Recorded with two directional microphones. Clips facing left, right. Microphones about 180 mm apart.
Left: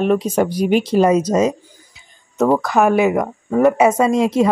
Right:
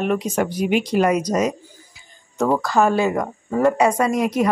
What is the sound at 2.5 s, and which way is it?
Speech, 20° left (ahead or behind).